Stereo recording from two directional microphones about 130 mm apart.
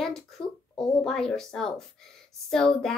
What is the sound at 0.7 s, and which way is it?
Speech, 5° left (ahead or behind).